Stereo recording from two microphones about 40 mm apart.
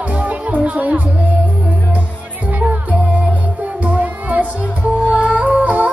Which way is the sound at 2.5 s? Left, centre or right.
Right.